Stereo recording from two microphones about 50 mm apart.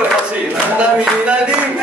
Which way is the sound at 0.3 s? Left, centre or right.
Right.